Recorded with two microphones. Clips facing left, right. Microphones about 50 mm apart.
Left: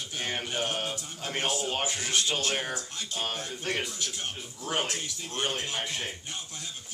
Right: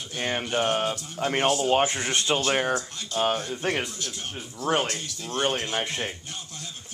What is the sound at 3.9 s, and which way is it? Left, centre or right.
Speech, centre.